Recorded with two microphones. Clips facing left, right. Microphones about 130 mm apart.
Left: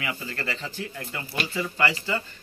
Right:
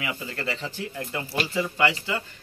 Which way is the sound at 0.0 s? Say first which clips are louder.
Right 1 dB; 15° right (ahead or behind).